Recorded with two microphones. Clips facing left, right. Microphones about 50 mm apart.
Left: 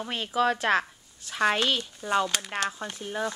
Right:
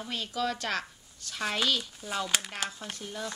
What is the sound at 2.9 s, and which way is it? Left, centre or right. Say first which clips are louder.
Speech: left 7 dB; left.